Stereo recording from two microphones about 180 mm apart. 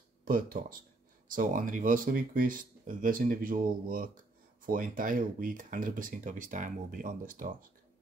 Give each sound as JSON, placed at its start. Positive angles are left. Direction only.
{"t": 0.2, "sound": "speech", "side_deg": -50}